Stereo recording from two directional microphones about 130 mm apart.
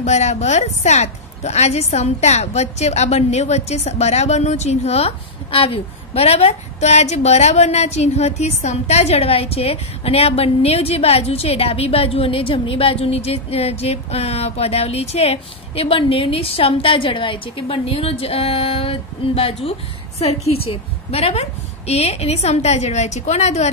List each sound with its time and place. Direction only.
0.0 s a woman's voice: 60° left (ahead or behind)